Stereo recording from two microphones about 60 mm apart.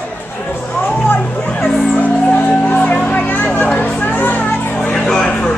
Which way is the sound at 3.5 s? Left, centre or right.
Left.